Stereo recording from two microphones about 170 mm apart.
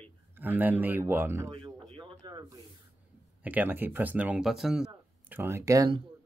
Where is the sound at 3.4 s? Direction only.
10° right (ahead or behind).